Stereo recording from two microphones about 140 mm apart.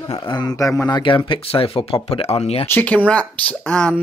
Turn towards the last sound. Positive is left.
turn(degrees=10)  # may be behind; listen again after turning